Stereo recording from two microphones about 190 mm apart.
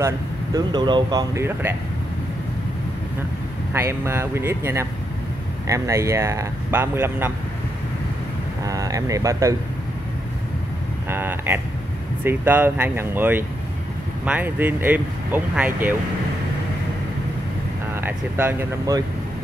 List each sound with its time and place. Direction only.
0.0 s speech: 20° right (ahead or behind)
3.7 s speech: 15° right (ahead or behind)
8.6 s speech: 20° right (ahead or behind)
11.1 s speech: 10° right (ahead or behind)
18.0 s speech: 10° right (ahead or behind)